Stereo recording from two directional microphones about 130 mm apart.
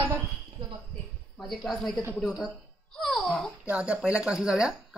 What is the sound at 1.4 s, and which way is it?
Speech, centre (ahead or behind).